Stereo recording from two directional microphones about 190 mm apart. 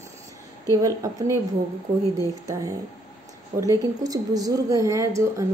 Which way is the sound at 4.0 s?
20° right (ahead or behind).